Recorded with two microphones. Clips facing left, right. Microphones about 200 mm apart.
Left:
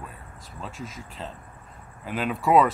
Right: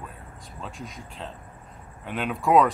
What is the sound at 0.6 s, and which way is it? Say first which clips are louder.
Speech: left 1 dB; centre (ahead or behind).